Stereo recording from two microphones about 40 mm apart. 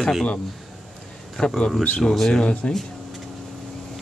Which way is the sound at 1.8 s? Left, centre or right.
Left.